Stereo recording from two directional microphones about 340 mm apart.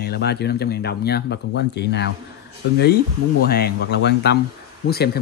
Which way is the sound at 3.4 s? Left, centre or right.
Left.